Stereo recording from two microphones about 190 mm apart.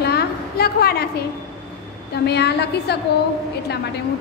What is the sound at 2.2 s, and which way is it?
Speech, 60° left (ahead or behind).